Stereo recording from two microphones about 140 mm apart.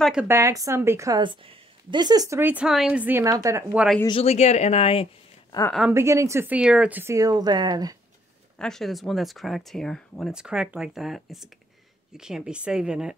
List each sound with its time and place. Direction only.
0.0 s a woman's voice: 5° right (ahead or behind)
0.3 s speech: 20° right (ahead or behind)
1.2 s speech: 40° right (ahead or behind); by 2.6 s 15° right (ahead or behind)
2.6 s a woman's voice: 5° right (ahead or behind); by 3.6 s 25° right (ahead or behind)
4.1 s speech: 45° left (ahead or behind)
5.5 s a woman's voice: 30° left (ahead or behind)
5.9 s speech: 20° right (ahead or behind)
8.5 s speech: 5° left (ahead or behind)